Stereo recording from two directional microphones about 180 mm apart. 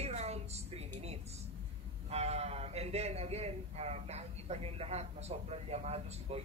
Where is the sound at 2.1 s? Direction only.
35° right (ahead or behind).